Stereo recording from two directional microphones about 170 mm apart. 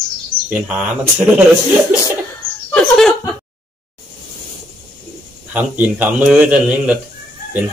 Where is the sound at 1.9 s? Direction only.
10° right (ahead or behind).